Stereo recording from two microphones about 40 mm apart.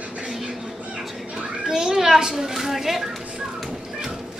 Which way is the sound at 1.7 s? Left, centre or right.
Centre.